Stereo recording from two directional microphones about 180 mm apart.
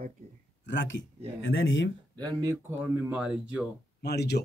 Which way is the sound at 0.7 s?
85° left.